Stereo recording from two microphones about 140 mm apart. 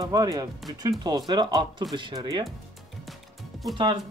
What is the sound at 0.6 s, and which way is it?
Speech, centre (ahead or behind).